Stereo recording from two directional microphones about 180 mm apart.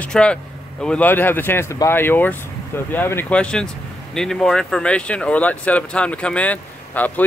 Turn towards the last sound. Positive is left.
turn(degrees=10)  # may be behind; listen again after turning